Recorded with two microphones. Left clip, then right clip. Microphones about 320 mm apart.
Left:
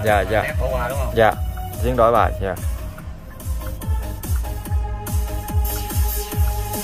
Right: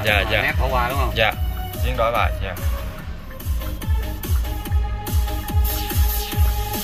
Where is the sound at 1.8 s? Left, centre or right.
Left.